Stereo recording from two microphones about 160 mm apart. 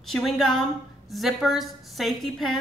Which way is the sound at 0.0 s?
Centre (ahead or behind).